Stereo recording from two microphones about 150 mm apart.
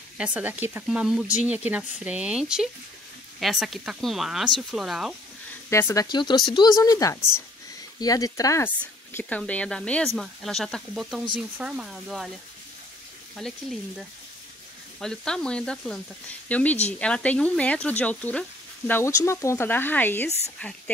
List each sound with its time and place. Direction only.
0.2 s speech: 10° right (ahead or behind)
5.7 s speech: 15° left (ahead or behind)
6.0 s speech: 30° left (ahead or behind); by 12.3 s 5° right (ahead or behind)
13.4 s speech: centre (ahead or behind)